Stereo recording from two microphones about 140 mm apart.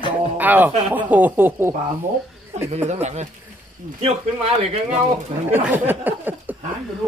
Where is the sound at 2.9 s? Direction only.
55° right (ahead or behind).